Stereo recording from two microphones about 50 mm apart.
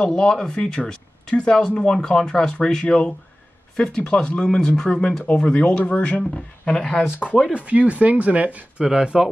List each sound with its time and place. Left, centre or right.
0.0 s speech: centre
6.3 s speech: centre
7.5 s speech: right
8.8 s speech: centre